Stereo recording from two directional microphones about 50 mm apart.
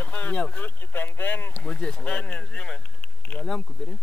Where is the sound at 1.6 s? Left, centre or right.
Centre.